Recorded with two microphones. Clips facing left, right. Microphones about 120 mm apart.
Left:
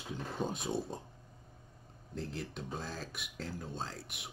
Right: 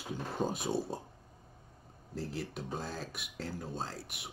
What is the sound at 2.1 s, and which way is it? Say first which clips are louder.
Speech: right 2 dB; 5° right (ahead or behind).